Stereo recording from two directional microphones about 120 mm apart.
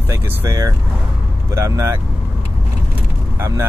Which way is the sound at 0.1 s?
30° right (ahead or behind).